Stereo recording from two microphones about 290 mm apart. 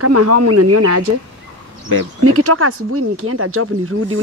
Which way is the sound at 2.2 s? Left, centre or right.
Right.